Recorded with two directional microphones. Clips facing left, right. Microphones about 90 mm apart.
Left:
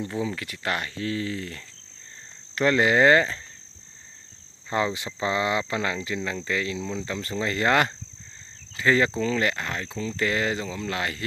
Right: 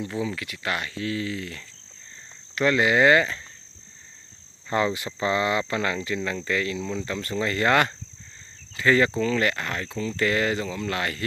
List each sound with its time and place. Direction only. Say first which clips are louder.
0.2 s speech: even; 35° left (ahead or behind)
4.6 s speech: right 2 dB; 15° left (ahead or behind)